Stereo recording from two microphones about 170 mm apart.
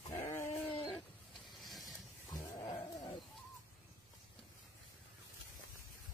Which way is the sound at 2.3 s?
20° left (ahead or behind).